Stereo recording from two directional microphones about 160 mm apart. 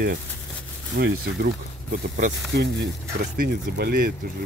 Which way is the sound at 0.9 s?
80° right.